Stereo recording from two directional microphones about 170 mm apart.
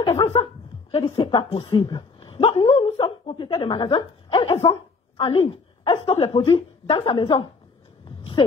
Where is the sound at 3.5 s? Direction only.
25° left (ahead or behind).